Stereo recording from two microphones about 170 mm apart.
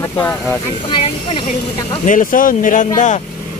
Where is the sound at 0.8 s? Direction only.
30° left (ahead or behind).